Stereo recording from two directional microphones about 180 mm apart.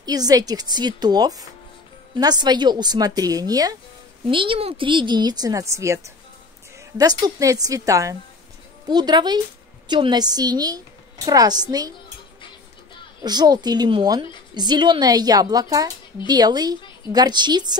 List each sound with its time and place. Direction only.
0.0 s a woman's voice: 20° right (ahead or behind)
13.2 s a woman's voice: 25° right (ahead or behind)